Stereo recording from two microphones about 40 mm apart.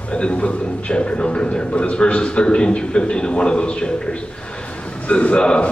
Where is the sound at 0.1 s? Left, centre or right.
Left.